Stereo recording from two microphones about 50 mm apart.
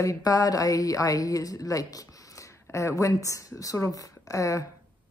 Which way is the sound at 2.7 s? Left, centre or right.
Left.